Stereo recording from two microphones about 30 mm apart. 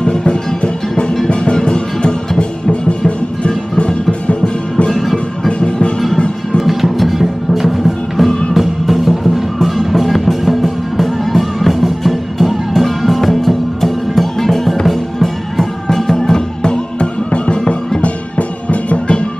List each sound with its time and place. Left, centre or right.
0.0 s music: left
3.7 s music: left
6.6 s music: centre
16.6 s music: left
17.3 s music: left